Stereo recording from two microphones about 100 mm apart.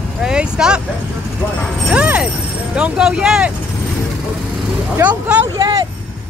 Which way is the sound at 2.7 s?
10° right (ahead or behind).